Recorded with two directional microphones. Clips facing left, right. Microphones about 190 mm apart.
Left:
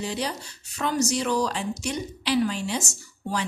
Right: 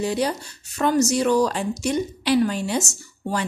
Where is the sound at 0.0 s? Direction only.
50° right (ahead or behind).